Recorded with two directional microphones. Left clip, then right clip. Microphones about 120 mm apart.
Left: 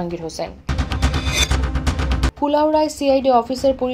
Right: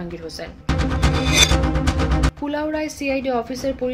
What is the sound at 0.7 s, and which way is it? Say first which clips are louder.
Music: right 8 dB; centre (ahead or behind).